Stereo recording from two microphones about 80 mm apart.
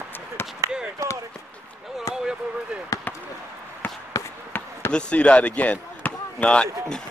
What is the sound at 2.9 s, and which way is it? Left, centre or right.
Basketball bounce, left.